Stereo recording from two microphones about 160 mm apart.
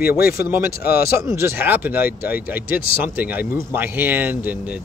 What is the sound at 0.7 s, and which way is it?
Speech, 75° left (ahead or behind).